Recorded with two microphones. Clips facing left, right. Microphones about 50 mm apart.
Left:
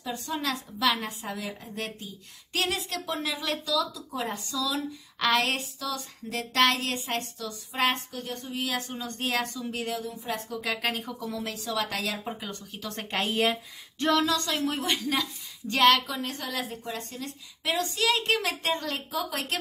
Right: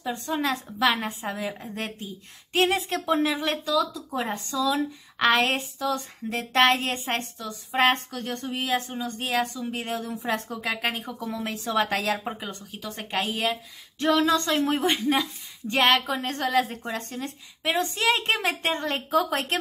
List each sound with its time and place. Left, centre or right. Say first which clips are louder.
0.0 s a woman's voice: right 4 dB; right
8.1 s speech: right 5 dB; right
8.5 s a woman's voice: right 4 dB; right
8.9 s speech: right 3 dB; centre
10.0 s speech: right 5 dB; right
10.6 s speech: right 2 dB; right
11.4 s speech: right 7 dB; right
12.8 s a woman's voice: right 1 dB; centre
14.2 s speech: right 5 dB; right
16.2 s a woman's voice: right 8 dB; right
17.6 s a woman's voice: right 3 dB; right